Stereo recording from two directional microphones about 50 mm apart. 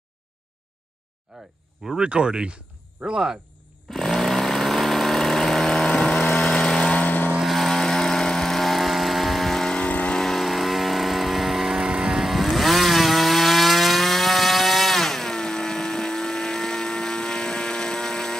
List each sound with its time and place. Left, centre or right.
1.9 s speech: centre
3.9 s a sound: centre
5.9 s vehicle: left
7.0 s vehicle: left
7.4 s vehicle: centre
9.8 s vehicle: left
10.1 s vehicle: centre